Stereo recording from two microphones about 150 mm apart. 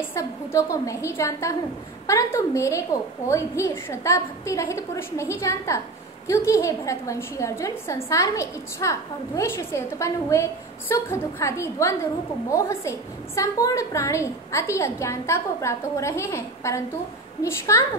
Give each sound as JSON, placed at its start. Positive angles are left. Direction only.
{"t": 0.0, "sound": "a woman's voice", "side_deg": 20}